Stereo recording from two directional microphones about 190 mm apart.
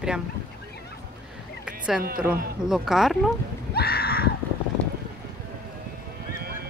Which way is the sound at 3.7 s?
55° left (ahead or behind).